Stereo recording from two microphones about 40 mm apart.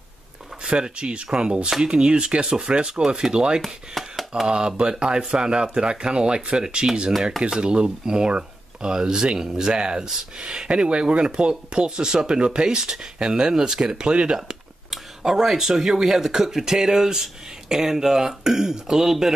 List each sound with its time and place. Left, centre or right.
0.7 s speech: right
3.6 s speech: centre
4.5 s speech: right
14.9 s speech: centre